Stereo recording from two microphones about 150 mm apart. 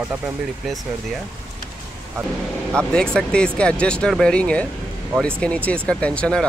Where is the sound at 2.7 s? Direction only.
5° left (ahead or behind).